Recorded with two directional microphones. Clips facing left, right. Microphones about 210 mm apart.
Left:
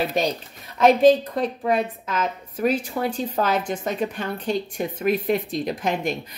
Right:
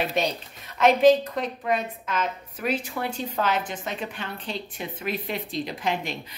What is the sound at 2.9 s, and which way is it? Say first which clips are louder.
A woman's voice: left 4 dB; 35° left (ahead or behind).